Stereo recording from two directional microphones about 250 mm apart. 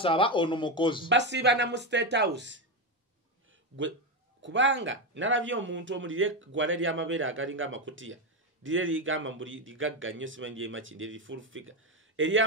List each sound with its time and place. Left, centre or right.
0.0 s speech: left
1.0 s a man's voice: right
4.4 s a man's voice: right